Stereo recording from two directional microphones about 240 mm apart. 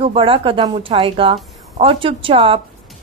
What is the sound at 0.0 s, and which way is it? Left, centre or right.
A woman's voice, right.